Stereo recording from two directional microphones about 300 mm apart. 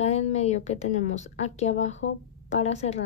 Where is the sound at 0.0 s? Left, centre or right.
Left.